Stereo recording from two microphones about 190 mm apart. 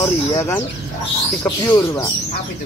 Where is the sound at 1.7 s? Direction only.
15° left (ahead or behind).